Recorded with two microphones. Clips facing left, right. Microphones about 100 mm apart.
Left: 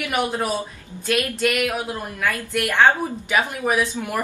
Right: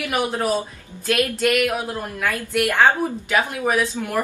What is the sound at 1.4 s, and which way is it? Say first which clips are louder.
Speech: right 2 dB; centre (ahead or behind).